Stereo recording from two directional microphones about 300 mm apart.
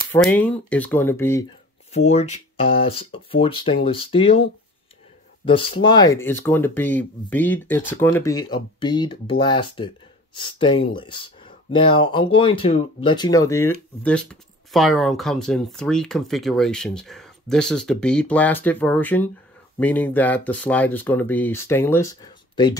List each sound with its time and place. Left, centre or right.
0.1 s speech: centre
2.0 s speech: left